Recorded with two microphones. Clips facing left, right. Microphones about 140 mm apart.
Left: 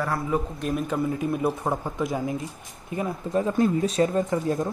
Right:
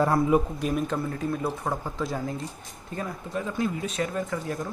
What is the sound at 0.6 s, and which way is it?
Speech, 5° left (ahead or behind).